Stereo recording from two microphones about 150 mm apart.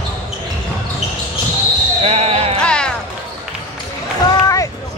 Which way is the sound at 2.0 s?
45° right (ahead or behind).